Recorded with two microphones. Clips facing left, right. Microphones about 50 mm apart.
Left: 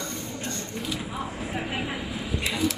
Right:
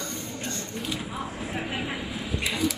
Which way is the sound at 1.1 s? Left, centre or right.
Centre.